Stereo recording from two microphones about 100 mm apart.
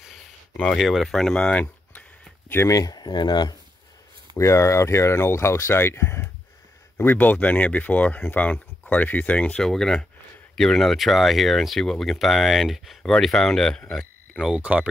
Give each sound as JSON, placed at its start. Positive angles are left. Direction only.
{"t": 0.7, "sound": "speech", "side_deg": 0}
{"t": 2.5, "sound": "speech", "side_deg": 25}
{"t": 2.8, "sound": "speech", "side_deg": 40}
{"t": 4.4, "sound": "speech", "side_deg": 30}
{"t": 14.4, "sound": "speech", "side_deg": -10}